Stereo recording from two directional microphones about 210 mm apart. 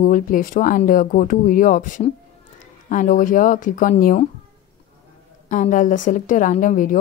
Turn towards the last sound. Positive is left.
turn(degrees=40)  # may be behind; listen again after turning